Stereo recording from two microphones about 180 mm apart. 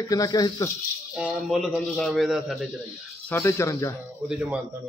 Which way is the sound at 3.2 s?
15° left (ahead or behind).